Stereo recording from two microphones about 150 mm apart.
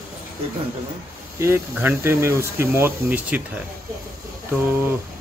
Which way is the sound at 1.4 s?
15° right (ahead or behind).